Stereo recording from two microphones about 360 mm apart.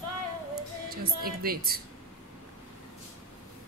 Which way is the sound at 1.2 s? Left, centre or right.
Right.